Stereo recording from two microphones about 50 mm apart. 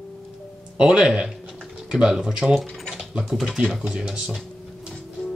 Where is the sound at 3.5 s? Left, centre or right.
Centre.